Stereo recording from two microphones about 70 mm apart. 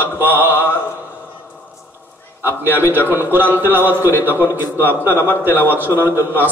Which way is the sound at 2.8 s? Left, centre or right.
Right.